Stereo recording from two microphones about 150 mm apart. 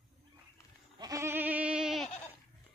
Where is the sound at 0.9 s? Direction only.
25° right (ahead or behind); by 2.0 s 5° right (ahead or behind).